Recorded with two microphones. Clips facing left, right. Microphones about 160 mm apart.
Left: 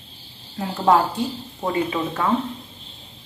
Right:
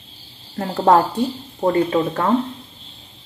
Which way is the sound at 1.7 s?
50° right (ahead or behind).